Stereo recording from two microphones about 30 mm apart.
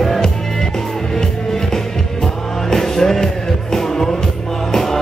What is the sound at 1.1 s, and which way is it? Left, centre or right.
Music, centre.